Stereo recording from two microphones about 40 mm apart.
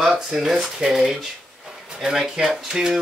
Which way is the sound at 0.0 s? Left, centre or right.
Centre.